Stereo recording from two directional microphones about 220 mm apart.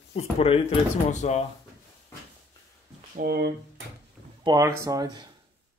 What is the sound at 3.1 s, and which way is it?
Speech, 45° right (ahead or behind).